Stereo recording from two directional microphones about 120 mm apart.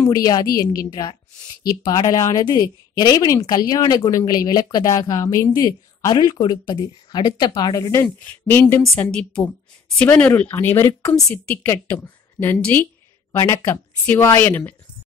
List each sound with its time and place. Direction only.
0.1 s a woman's voice: 30° left (ahead or behind); by 14.8 s 15° left (ahead or behind)